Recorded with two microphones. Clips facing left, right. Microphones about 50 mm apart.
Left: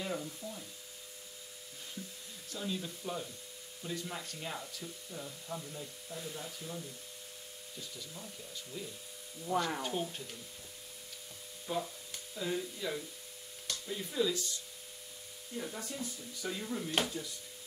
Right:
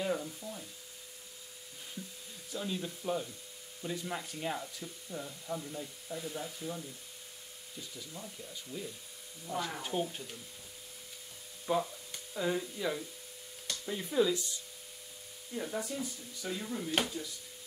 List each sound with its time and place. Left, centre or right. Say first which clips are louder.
0.0 s sizzle: right 4 dB; centre
2.5 s speech: right 2 dB; centre
8.7 s speech: right 2 dB; centre
11.6 s speech: right 5 dB; centre
15.5 s speech: right 4 dB; centre